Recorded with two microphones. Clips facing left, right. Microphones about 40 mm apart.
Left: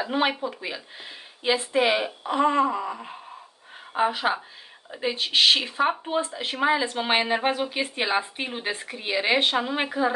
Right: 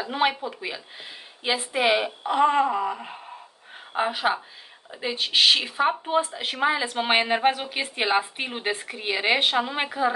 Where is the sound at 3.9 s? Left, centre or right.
Centre.